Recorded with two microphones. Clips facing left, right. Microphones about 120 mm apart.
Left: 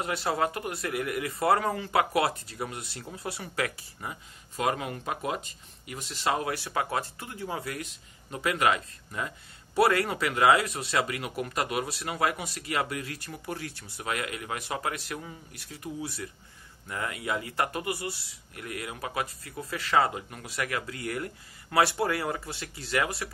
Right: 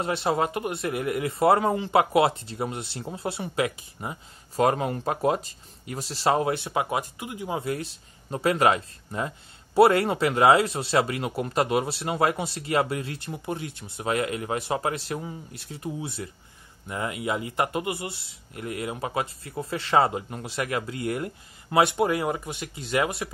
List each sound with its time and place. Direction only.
0.0 s speech: 25° right (ahead or behind)
4.6 s speech: 35° right (ahead or behind)